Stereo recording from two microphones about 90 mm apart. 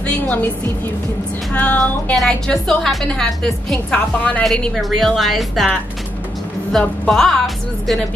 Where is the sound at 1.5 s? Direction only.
15° left (ahead or behind).